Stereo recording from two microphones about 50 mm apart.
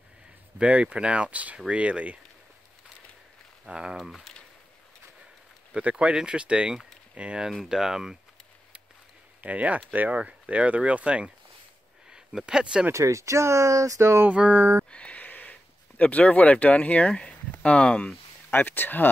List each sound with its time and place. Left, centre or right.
0.6 s speech: right
3.6 s speech: centre
3.9 s speech: centre
5.7 s speech: right
7.6 s speech: centre
9.4 s speech: right
12.1 s speech: centre
12.9 s speech: right
14.3 s speech: right
14.9 s a sound: left
16.0 s speech: left
18.5 s speech: left